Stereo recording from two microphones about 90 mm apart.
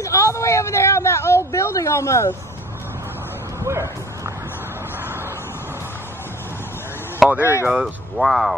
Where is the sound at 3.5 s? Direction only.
30° right (ahead or behind).